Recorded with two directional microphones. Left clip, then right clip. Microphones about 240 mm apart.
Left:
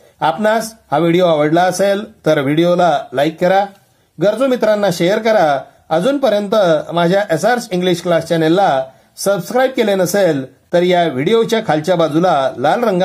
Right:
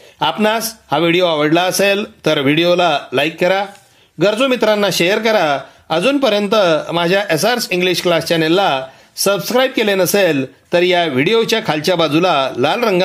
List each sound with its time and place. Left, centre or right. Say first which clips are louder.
0.2 s speech: left 1 dB; right